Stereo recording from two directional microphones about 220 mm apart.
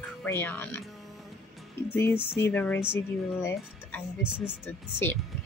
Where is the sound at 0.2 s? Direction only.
10° left (ahead or behind).